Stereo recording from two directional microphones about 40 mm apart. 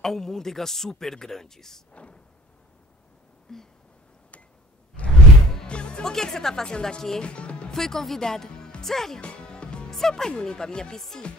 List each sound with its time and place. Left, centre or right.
0.0 s speech: centre
3.5 s a sound: centre
5.0 s whoosh: left
5.7 s music: left
6.1 s speech: centre
7.2 s speech: left
7.7 s speech: centre
9.2 s music: left
9.8 s speech: centre